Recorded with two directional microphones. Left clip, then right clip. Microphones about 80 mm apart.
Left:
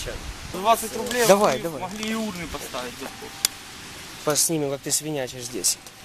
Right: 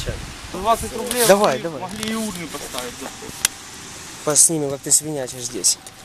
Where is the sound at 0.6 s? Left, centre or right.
Left.